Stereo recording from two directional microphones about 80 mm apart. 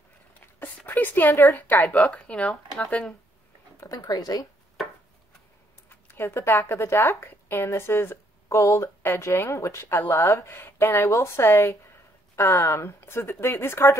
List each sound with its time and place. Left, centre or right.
0.3 s a sound: left
1.4 s a woman's voice: left
3.8 s speech: left
5.9 s a woman's voice: left